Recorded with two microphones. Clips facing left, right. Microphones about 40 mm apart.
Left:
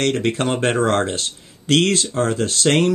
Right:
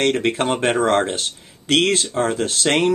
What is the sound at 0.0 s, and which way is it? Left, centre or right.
Speech, right.